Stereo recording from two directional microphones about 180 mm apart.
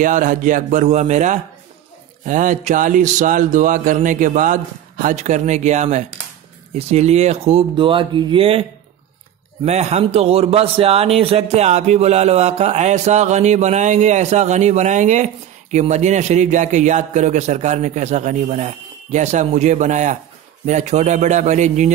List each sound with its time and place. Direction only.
0.0 s a man's voice: 45° right (ahead or behind)
9.7 s a man's voice: 35° right (ahead or behind)